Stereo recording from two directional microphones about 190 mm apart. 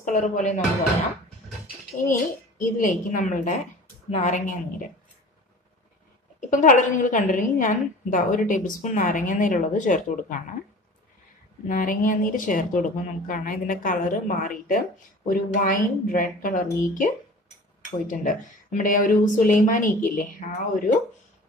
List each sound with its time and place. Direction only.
0.0 s a woman's voice: 40° left (ahead or behind)
2.0 s a woman's voice: 45° left (ahead or behind)
6.5 s a woman's voice: 40° left (ahead or behind)
11.6 s a woman's voice: 45° left (ahead or behind)